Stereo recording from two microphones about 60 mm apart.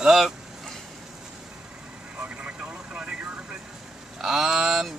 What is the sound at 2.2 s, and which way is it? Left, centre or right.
Vehicle, right.